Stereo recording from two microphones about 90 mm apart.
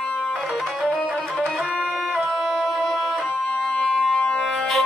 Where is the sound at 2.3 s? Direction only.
Centre (ahead or behind).